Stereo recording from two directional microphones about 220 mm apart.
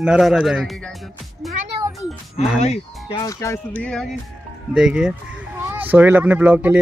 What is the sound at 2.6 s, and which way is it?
Speech, 25° left (ahead or behind).